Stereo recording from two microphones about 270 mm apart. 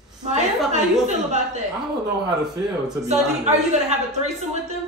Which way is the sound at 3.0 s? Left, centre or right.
Right.